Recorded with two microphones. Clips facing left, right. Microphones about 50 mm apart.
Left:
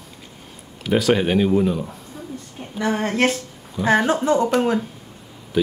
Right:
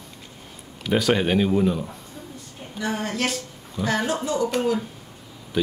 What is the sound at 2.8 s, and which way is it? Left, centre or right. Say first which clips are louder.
A woman's voice: left 6 dB; left.